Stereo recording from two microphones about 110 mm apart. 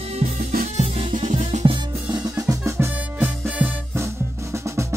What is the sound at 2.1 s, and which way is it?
Drum kit, 30° right (ahead or behind).